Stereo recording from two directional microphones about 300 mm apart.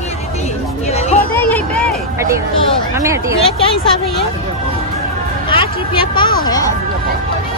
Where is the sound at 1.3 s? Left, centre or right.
Centre.